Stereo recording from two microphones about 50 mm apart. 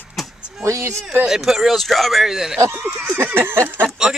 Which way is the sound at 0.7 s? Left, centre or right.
Right.